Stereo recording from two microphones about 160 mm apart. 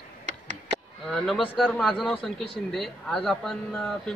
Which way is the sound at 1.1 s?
Centre (ahead or behind).